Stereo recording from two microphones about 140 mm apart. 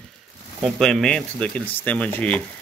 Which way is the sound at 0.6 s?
Centre (ahead or behind).